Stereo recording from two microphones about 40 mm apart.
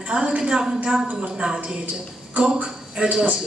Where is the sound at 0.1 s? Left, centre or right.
Right.